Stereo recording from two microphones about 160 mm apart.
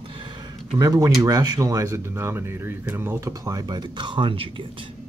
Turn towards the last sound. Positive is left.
turn(degrees=-35)  # may be behind; listen again after turning